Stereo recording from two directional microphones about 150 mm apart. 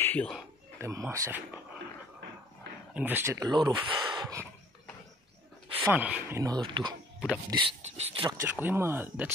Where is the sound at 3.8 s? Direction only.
30° right (ahead or behind).